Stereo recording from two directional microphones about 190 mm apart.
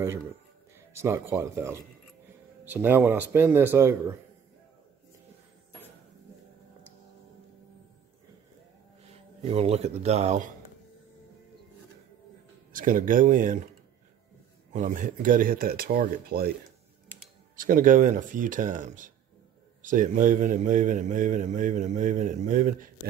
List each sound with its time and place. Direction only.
0.9 s speech: 15° right (ahead or behind)
9.0 s speech: 35° right (ahead or behind)
12.7 s a man's voice: 45° right (ahead or behind)
14.7 s a man's voice: 45° right (ahead or behind)
17.1 s typing: 10° right (ahead or behind)
17.6 s a man's voice: 45° right (ahead or behind)